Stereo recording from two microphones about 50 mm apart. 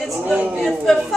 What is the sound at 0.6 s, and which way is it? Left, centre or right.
Speech, centre.